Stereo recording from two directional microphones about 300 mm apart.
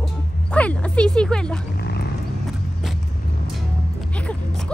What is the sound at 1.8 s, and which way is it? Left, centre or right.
Wild animals, left.